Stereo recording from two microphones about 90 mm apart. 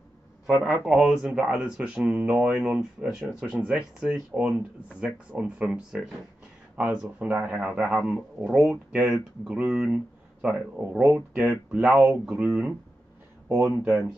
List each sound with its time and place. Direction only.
0.7 s speech: 5° right (ahead or behind)
13.5 s speech: 25° right (ahead or behind)